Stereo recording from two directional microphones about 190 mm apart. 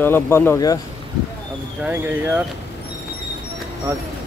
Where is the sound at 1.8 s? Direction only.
5° right (ahead or behind).